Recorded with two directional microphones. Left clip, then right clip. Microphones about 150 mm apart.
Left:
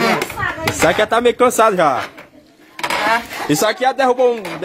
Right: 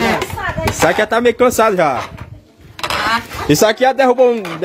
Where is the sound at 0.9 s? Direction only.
30° right (ahead or behind).